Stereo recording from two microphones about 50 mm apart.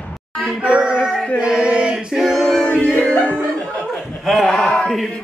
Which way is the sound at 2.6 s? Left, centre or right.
Centre.